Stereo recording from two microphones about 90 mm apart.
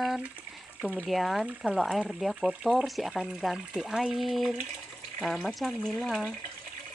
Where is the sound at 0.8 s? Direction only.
15° right (ahead or behind).